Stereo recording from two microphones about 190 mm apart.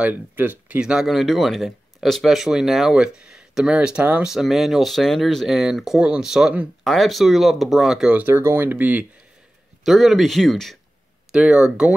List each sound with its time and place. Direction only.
0.0 s speech: 10° right (ahead or behind)